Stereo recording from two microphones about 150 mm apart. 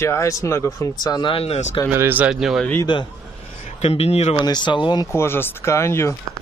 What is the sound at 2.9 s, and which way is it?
Speech, 30° left (ahead or behind).